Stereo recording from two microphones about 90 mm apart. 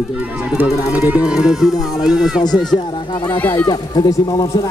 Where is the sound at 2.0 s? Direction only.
5° right (ahead or behind).